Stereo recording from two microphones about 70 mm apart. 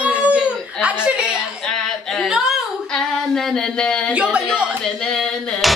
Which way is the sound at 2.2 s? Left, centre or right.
Centre.